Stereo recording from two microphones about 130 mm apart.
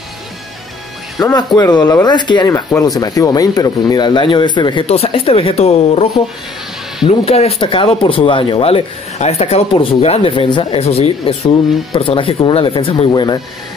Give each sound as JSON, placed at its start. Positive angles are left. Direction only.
{"t": 1.2, "sound": "speech", "side_deg": 30}
{"t": 4.8, "sound": "speech", "side_deg": 50}
{"t": 7.1, "sound": "speech", "side_deg": 50}
{"t": 10.8, "sound": "speech", "side_deg": 50}